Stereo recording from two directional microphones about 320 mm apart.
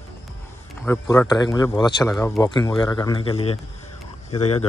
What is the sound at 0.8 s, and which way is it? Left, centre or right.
A man's voice, centre.